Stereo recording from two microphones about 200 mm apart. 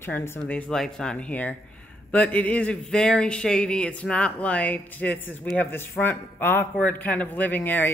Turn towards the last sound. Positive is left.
turn(degrees=10)  # may be behind; listen again after turning